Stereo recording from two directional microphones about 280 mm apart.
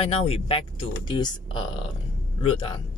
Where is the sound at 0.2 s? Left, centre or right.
Centre.